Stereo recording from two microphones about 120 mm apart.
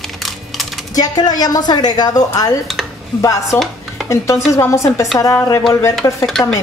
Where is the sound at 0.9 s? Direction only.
30° left (ahead or behind).